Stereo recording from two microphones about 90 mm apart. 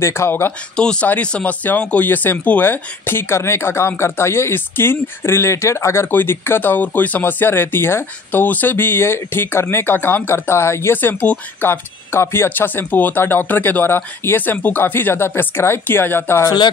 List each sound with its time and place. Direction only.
0.0 s speech: 25° left (ahead or behind)
1.0 s speech: 15° left (ahead or behind)
16.4 s speech: 55° left (ahead or behind)